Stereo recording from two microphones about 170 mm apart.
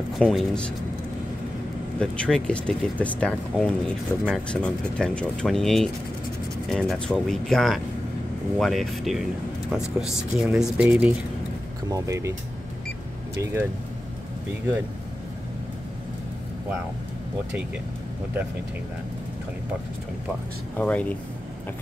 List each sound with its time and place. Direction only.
0.2 s speech: 5° left (ahead or behind)
2.0 s speech: 5° left (ahead or behind); by 12.4 s 15° right (ahead or behind)
13.4 s speech: 15° right (ahead or behind)
20.7 s speech: 10° left (ahead or behind)